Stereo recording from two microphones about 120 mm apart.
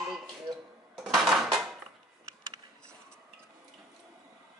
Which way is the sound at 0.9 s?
Centre (ahead or behind).